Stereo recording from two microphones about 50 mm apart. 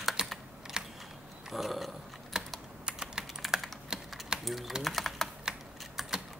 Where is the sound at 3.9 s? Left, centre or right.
Centre.